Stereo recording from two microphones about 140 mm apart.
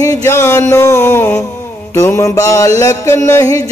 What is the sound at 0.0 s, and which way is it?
Music, 20° left (ahead or behind).